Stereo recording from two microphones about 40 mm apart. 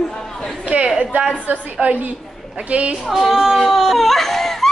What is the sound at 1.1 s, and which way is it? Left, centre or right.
A woman's voice, right.